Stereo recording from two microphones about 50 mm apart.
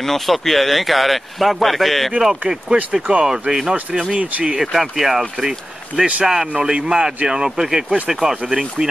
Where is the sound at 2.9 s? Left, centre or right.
Right.